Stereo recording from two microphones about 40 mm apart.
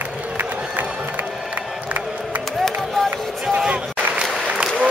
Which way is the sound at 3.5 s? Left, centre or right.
Right.